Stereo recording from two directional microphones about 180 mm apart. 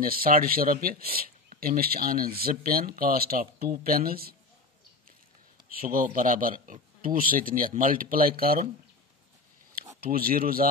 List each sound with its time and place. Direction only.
0.0 s speech: 55° right (ahead or behind)
5.7 s speech: 50° right (ahead or behind)
9.9 s speech: 55° right (ahead or behind)